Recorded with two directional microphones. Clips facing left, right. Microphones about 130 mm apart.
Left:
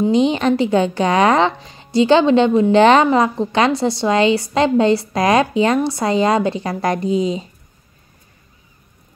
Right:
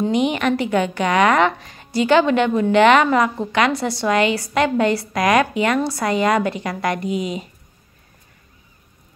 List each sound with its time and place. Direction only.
0.1 s a woman's voice: 30° left (ahead or behind)